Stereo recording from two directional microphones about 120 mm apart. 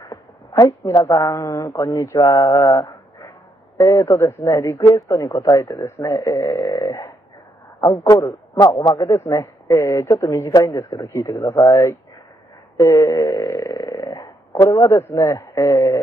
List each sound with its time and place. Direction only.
0.1 s a man's voice: 30° left (ahead or behind)
8.1 s a man's voice: 30° left (ahead or behind)
12.7 s snoring: 25° left (ahead or behind)